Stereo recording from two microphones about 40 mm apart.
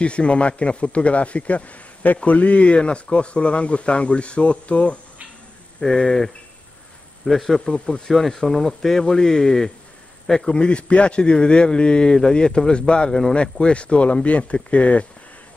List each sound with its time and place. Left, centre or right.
0.0 s a man's voice: left
5.8 s a man's voice: centre
10.5 s a man's voice: left